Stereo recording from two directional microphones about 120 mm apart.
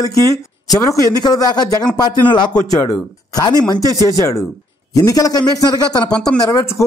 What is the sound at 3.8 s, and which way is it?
Speech, 30° right (ahead or behind).